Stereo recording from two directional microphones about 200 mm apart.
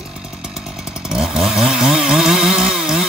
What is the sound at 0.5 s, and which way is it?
Chainsaw, 5° right (ahead or behind).